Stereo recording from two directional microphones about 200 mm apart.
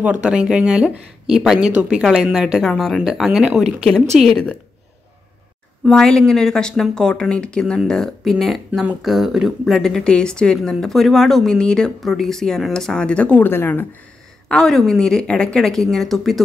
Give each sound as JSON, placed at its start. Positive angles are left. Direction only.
{"t": 0.0, "sound": "speech", "side_deg": -5}
{"t": 5.9, "sound": "speech", "side_deg": 5}